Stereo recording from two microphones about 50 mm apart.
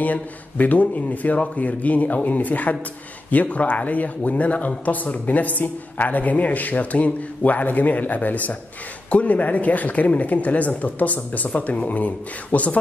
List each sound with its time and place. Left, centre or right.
0.0 s speech: left